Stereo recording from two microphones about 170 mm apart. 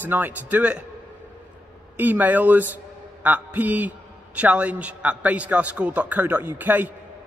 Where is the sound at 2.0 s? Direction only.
10° right (ahead or behind).